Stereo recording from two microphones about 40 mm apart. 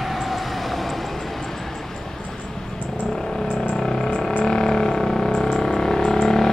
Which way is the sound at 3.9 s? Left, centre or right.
Centre.